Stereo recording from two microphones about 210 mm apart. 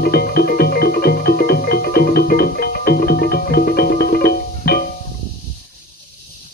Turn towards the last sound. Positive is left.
turn(degrees=45)  # may be behind; listen again after turning